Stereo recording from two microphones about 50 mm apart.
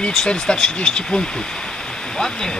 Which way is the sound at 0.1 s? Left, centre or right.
Centre.